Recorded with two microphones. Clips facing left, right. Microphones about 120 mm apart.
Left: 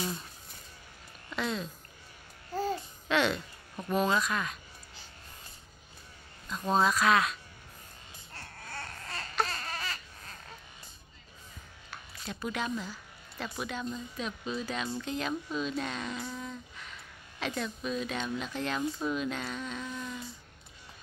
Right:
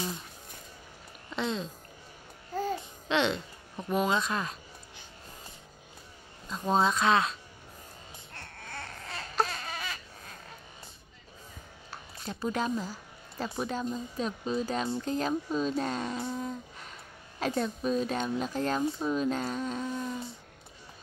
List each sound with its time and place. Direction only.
1.3 s music: 25° right (ahead or behind)
2.6 s babbling: 25° right (ahead or behind)
4.2 s speech: 30° right (ahead or behind)
6.5 s speech: 25° right (ahead or behind)
8.4 s baby cry: centre (ahead or behind)
9.4 s a sound: 5° right (ahead or behind)
11.9 s music: 35° right (ahead or behind)
13.6 s speech: 35° right (ahead or behind)
16.4 s humming: 40° right (ahead or behind)
17.4 s speech: 35° right (ahead or behind)
18.8 s speech: 25° right (ahead or behind)
19.1 s speech: 40° right (ahead or behind)